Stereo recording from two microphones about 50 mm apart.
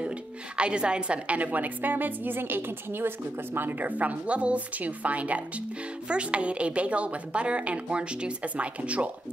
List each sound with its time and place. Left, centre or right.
0.6 s a woman's voice: right